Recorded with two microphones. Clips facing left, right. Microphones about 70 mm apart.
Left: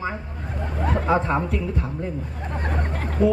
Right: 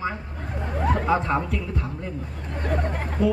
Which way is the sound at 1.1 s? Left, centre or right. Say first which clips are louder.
Left 1 dB; left.